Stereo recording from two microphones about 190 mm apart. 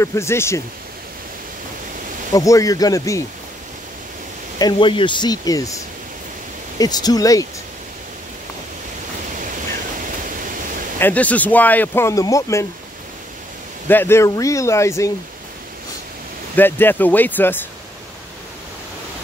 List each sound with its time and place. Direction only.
0.0 s speech: 15° left (ahead or behind)
2.3 s speech: 15° left (ahead or behind)
4.6 s speech: 25° left (ahead or behind)
6.8 s speech: 20° left (ahead or behind)
10.2 s pink noise: 45° right (ahead or behind)
11.0 s speech: 10° left (ahead or behind)
13.8 s speech: 10° left (ahead or behind)
16.5 s speech: 10° left (ahead or behind)